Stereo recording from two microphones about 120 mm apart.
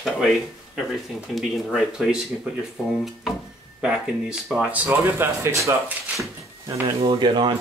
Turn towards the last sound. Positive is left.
turn(degrees=-40)  # may be behind; listen again after turning